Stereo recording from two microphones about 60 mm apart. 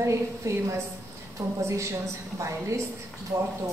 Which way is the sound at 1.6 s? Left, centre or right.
Right.